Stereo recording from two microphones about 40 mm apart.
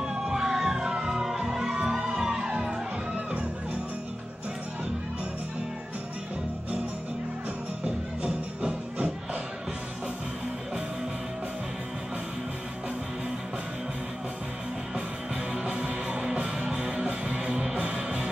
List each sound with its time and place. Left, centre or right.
0.0 s music: centre
7.8 s music: right
15.5 s music: right